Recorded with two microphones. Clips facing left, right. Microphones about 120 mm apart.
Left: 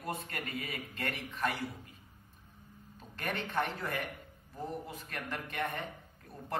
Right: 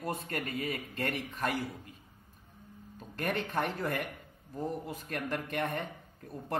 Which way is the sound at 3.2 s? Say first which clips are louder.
Right 2 dB; 45° right (ahead or behind).